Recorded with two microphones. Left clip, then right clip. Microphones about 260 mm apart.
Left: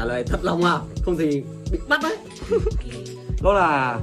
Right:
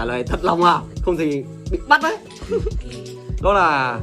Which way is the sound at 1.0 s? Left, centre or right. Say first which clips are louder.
Right 1 dB; right.